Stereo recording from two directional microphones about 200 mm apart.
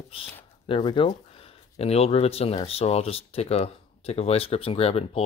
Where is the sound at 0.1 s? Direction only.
25° left (ahead or behind).